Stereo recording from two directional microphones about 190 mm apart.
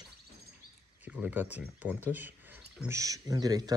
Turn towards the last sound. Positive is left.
turn(degrees=-20)  # may be behind; listen again after turning